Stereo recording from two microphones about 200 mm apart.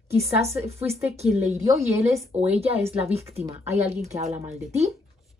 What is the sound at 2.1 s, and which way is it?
Speech, 35° right (ahead or behind).